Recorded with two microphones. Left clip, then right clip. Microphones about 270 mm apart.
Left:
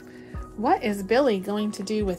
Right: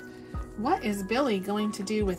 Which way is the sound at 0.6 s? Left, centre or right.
Centre.